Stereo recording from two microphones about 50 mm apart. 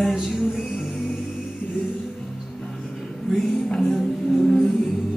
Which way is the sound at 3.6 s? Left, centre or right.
Centre.